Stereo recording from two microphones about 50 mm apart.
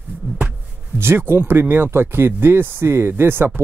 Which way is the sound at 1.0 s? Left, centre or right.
Right.